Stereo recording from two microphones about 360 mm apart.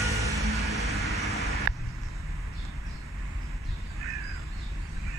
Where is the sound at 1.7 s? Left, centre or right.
Right.